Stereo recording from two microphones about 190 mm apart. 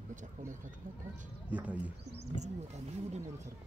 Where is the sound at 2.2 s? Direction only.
35° right (ahead or behind).